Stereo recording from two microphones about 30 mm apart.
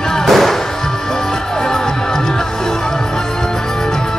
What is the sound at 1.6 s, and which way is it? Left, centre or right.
Music, centre.